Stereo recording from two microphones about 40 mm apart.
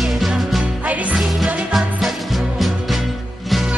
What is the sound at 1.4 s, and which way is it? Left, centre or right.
Music, centre.